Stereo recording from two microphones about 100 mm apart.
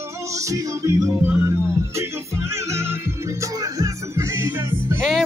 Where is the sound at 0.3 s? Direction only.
30° right (ahead or behind).